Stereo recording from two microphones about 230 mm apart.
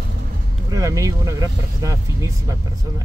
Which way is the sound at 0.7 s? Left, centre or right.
Centre.